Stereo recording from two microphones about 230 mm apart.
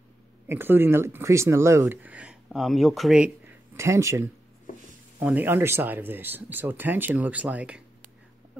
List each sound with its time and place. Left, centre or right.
0.5 s speech: centre
4.7 s a sound: left
5.2 s speech: centre